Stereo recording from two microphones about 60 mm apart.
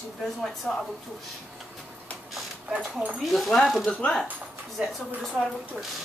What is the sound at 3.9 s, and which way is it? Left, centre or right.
Speech, centre.